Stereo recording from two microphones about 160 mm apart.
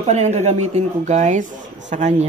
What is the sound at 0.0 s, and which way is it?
Speech, 45° right (ahead or behind).